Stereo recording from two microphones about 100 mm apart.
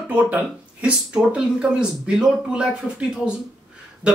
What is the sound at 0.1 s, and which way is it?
Speech, 15° right (ahead or behind).